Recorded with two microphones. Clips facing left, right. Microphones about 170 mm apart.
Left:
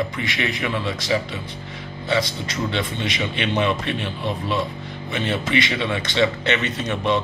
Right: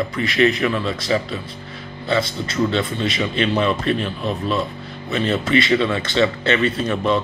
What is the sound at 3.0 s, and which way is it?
Speech, 20° left (ahead or behind).